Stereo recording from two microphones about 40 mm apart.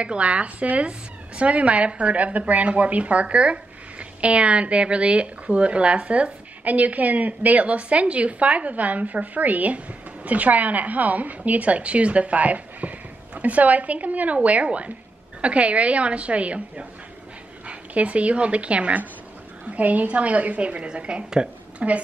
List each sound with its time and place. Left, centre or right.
0.0 s a woman's voice: right